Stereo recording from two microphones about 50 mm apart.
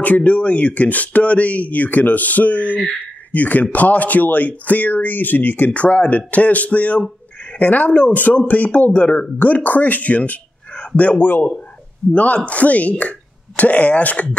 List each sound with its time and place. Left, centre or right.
0.0 s a man's voice: left